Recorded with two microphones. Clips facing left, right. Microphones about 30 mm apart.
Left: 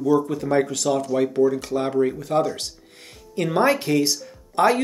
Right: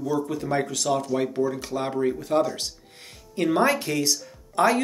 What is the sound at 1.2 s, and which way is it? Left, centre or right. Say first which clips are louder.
Speech: left 5 dB; centre.